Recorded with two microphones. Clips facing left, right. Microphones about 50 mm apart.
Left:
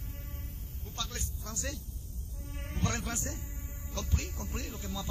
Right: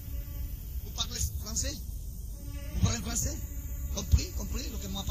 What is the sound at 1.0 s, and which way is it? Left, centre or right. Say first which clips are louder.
Speech: even; left.